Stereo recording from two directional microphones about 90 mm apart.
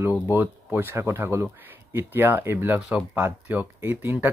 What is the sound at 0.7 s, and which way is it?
Speech, 25° right (ahead or behind).